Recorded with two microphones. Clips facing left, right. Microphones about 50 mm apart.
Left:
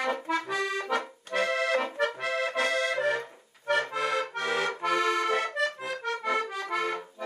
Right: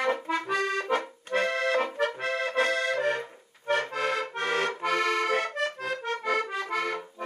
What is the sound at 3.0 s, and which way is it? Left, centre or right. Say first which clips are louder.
Accordion: even; right.